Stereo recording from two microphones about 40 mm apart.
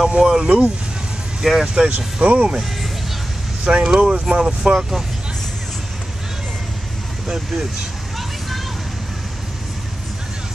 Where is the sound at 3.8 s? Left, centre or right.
Right.